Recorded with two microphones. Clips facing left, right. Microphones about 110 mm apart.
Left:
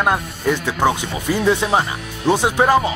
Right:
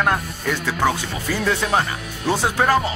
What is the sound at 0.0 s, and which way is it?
Speech, 15° left (ahead or behind).